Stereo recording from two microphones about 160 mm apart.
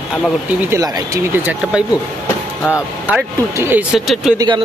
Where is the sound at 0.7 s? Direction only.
20° right (ahead or behind).